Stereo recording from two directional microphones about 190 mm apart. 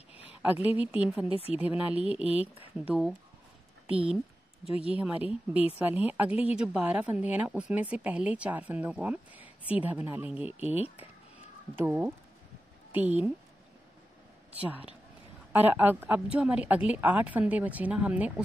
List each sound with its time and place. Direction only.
0.2 s a sound: 5° right (ahead or behind)
0.7 s a woman's voice: 5° right (ahead or behind)
2.5 s speech: 30° left (ahead or behind)
2.9 s speech: 5° right (ahead or behind)
4.8 s a woman's voice: 5° right (ahead or behind)
14.5 s a woman's voice: 5° right (ahead or behind)